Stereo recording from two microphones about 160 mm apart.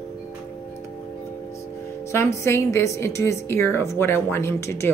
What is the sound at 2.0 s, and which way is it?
A woman's voice, 15° left (ahead or behind).